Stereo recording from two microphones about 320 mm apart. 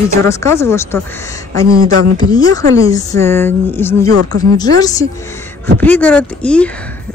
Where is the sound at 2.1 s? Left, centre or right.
Centre.